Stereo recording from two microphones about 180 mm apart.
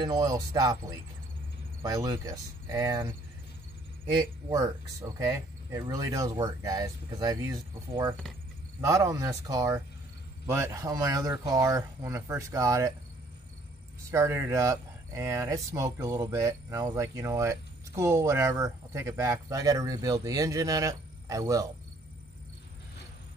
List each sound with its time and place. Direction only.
0.0 s speech: 20° right (ahead or behind)
14.1 s speech: 15° right (ahead or behind)